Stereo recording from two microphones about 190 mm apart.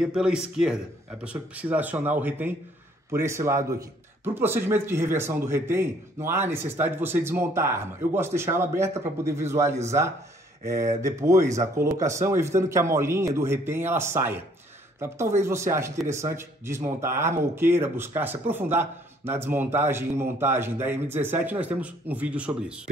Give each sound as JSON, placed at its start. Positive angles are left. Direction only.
{"t": 0.0, "sound": "speech", "side_deg": -5}
{"t": 15.4, "sound": "speech", "side_deg": -15}